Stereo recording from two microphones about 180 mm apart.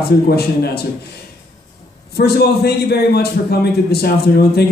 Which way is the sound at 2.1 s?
60° left (ahead or behind).